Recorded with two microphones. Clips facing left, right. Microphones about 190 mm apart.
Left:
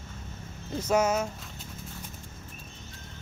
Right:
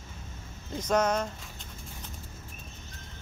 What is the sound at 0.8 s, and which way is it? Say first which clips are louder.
Speech: left 1 dB; 10° left (ahead or behind).